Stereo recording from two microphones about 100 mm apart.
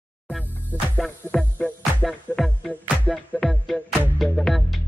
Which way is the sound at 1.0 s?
10° left (ahead or behind).